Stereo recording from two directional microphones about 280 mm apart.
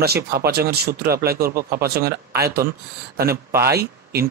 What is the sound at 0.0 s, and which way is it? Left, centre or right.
Speech, right.